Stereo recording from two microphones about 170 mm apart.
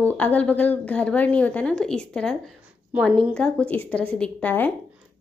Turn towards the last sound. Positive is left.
turn(degrees=10)  # may be behind; listen again after turning